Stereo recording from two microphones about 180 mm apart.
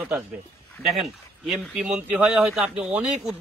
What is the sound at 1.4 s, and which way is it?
A man's voice, centre (ahead or behind).